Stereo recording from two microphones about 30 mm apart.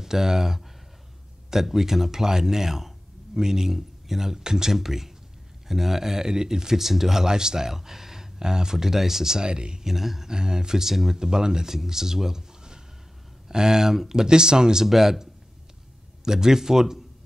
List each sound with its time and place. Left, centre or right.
0.0 s speech: centre
9.4 s speech: right
9.8 s speech: centre
10.2 s speech: right
10.9 s speech: centre
11.1 s speech: right
14.9 s speech: centre
16.3 s speech: centre